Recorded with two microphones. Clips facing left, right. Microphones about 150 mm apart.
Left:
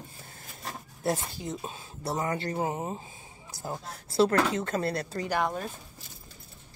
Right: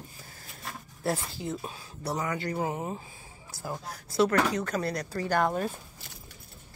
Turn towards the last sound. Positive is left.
turn(degrees=0)  # may be behind; listen again after turning